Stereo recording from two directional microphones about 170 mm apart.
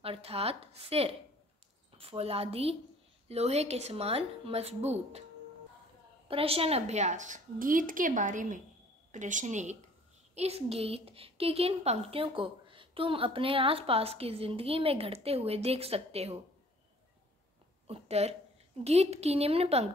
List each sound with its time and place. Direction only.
0.0 s a woman's voice: 35° right (ahead or behind)
6.2 s a woman's voice: 35° right (ahead or behind)
17.8 s a woman's voice: 35° right (ahead or behind)